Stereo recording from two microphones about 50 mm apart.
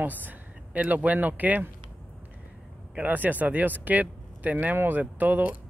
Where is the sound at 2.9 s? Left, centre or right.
Right.